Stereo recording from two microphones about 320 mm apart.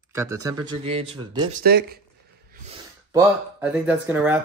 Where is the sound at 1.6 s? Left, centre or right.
Right.